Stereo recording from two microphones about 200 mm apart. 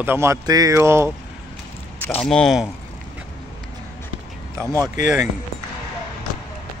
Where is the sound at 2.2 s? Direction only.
5° left (ahead or behind).